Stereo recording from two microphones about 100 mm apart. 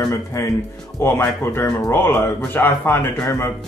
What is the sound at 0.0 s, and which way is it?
Speech, 35° left (ahead or behind).